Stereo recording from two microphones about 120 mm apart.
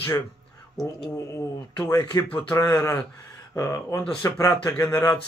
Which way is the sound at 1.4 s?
25° left (ahead or behind).